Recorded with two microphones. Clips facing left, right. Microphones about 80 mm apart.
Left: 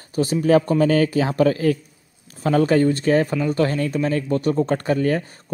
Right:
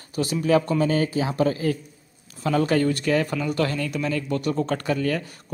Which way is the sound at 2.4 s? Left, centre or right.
Left.